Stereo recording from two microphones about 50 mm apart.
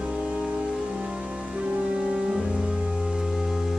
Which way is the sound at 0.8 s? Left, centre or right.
Centre.